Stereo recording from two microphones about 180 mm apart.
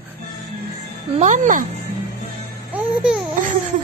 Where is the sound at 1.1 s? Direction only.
40° right (ahead or behind).